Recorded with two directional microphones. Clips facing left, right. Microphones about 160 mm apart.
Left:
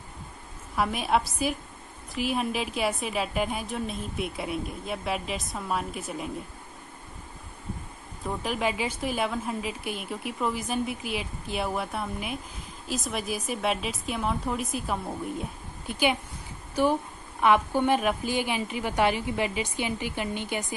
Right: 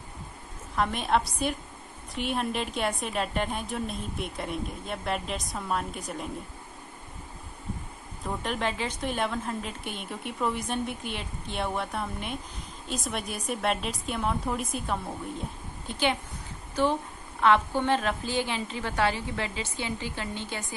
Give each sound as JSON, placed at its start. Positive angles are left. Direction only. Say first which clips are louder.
{"t": 0.7, "sound": "a woman's voice", "louder": "left 1 dB", "side_deg": 5}
{"t": 8.3, "sound": "a woman's voice", "louder": "left 2 dB", "side_deg": 5}